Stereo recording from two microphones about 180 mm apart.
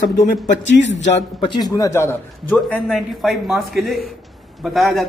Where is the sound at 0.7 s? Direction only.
90° left.